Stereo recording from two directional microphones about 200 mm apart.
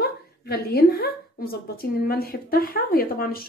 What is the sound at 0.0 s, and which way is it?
A woman's voice, 50° left (ahead or behind).